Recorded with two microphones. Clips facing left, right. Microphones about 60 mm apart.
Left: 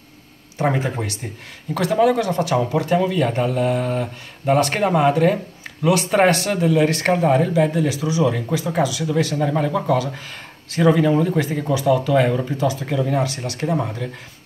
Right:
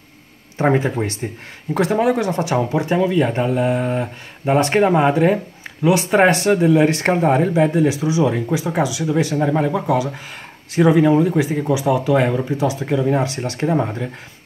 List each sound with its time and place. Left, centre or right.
0.6 s speech: right
1.7 s speech: right